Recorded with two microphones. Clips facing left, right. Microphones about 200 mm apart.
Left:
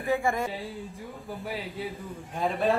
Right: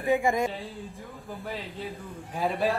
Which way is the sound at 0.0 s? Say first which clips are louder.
Right 3 dB; 15° right (ahead or behind).